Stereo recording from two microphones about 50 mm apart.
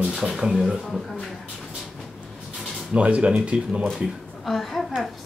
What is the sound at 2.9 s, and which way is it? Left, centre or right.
Speech, right.